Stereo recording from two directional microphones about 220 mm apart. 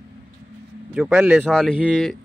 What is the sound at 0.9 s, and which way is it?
Speech, 10° right (ahead or behind).